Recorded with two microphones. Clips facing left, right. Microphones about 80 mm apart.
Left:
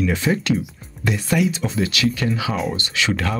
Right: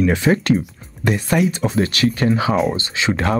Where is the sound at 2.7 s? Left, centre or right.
Right.